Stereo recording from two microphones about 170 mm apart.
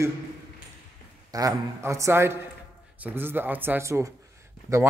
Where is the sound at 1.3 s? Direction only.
20° right (ahead or behind).